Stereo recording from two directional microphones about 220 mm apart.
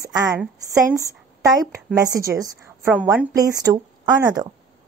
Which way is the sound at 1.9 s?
15° right (ahead or behind).